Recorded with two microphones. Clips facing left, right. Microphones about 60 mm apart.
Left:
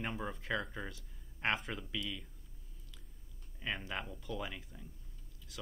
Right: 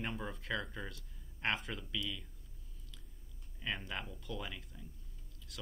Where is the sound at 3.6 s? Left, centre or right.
Centre.